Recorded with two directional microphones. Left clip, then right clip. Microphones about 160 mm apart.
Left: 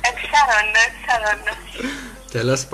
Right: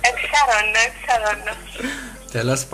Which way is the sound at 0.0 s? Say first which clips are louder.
Even; 10° right (ahead or behind).